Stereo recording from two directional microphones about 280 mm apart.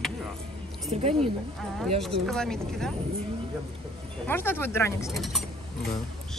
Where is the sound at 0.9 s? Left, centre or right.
Centre.